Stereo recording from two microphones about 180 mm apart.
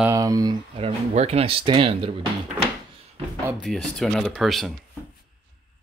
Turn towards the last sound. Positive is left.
turn(degrees=0)  # may be behind; listen again after turning